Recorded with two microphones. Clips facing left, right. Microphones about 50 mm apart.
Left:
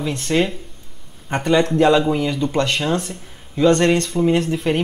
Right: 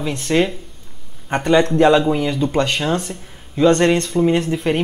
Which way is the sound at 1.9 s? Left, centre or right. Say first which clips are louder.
Right 1 dB; centre.